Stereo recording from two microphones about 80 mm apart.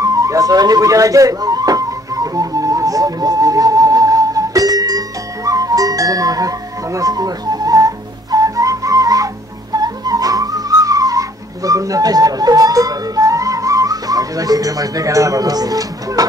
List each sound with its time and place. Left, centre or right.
0.0 s music: right
9.8 s whistling: right